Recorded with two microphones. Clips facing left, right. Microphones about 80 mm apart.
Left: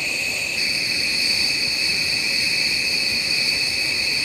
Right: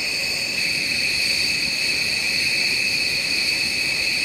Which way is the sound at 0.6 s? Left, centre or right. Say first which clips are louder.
Right 1 dB; centre.